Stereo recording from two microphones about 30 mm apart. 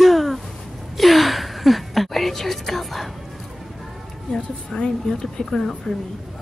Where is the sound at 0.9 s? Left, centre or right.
Centre.